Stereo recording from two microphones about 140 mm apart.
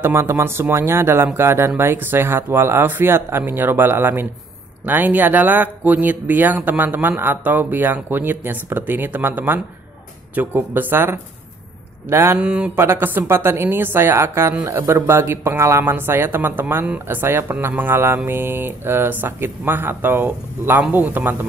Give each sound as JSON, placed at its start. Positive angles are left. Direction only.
{"t": 0.0, "sound": "a woman's voice", "side_deg": -20}